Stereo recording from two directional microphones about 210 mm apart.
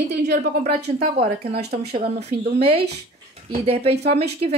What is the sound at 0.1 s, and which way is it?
Speech, 50° right (ahead or behind).